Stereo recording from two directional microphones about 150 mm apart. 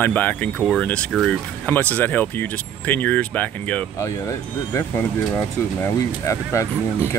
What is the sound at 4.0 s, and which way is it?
Speech, 20° left (ahead or behind).